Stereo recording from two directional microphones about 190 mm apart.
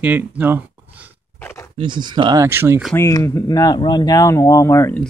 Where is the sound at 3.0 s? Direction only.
15° left (ahead or behind).